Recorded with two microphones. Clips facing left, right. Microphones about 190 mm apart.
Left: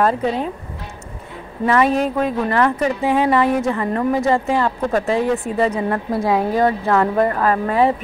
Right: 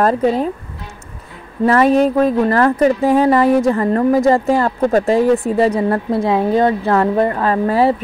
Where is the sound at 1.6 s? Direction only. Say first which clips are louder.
Right 5 dB; 40° right (ahead or behind).